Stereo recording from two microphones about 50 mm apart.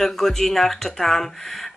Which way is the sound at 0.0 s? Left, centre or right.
Centre.